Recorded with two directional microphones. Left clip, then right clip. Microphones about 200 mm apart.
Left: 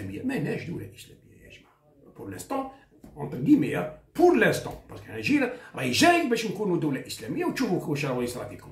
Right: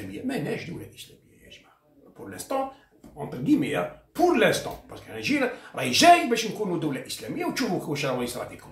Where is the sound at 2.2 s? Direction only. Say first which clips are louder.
Right 3 dB; 15° left (ahead or behind).